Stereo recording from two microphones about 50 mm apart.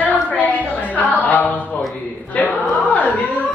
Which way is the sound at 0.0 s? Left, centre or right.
Left.